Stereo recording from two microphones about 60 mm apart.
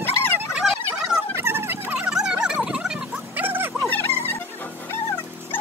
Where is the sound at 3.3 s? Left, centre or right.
Right.